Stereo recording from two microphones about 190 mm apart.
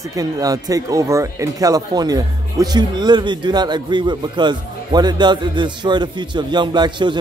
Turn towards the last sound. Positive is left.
turn(degrees=-25)  # may be behind; listen again after turning